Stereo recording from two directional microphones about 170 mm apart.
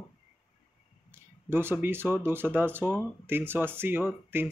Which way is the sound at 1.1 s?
15° right (ahead or behind).